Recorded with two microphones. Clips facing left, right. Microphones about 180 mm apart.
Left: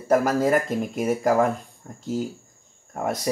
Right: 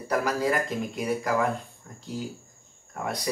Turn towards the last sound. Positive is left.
turn(degrees=45)  # may be behind; listen again after turning